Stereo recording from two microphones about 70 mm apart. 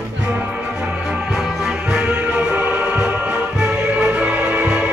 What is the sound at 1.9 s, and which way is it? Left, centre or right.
Music, centre.